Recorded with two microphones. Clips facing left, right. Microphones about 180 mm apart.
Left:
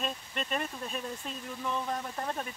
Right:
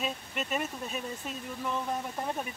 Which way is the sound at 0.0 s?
5° right (ahead or behind).